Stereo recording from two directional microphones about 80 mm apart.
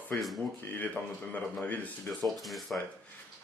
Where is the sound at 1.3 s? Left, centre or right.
Left.